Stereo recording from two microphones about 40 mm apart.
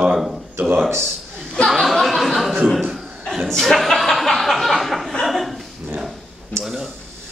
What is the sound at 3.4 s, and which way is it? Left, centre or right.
Speech, centre.